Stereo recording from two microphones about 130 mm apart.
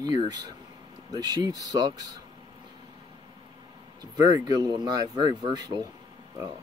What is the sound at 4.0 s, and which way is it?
Speech, 30° right (ahead or behind).